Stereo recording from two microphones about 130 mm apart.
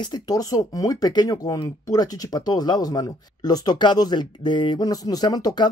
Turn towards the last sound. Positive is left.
turn(degrees=30)  # may be behind; listen again after turning